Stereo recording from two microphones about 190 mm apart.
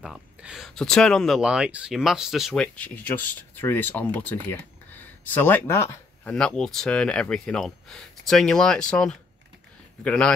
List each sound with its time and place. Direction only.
0.0 s speech: centre (ahead or behind)